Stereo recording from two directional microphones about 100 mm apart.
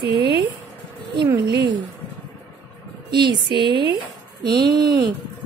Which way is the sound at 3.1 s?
50° right (ahead or behind).